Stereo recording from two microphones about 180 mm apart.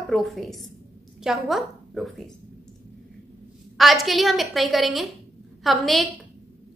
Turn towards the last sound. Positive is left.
turn(degrees=0)  # may be behind; listen again after turning